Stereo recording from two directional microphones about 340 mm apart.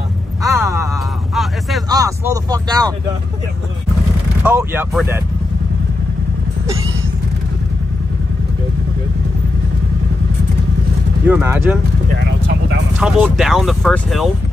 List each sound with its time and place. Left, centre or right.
0.4 s a sound: centre
1.9 s speech: centre
4.4 s speech: centre
11.2 s speech: centre
12.2 s vehicle: right
13.0 s speech: centre